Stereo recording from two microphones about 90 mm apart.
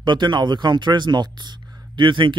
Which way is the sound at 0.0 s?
55° right (ahead or behind).